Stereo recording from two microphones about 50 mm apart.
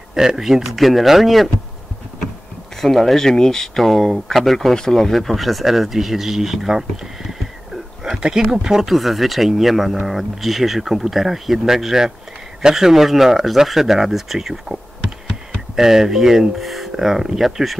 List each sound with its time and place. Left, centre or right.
0.1 s speech: centre
2.8 s speech: centre
7.2 s a sound: centre
8.2 s speech: centre